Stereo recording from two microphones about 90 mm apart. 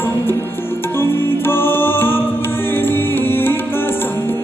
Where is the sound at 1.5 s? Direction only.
25° left (ahead or behind).